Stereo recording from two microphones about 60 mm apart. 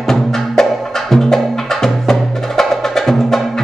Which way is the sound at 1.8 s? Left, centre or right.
Centre.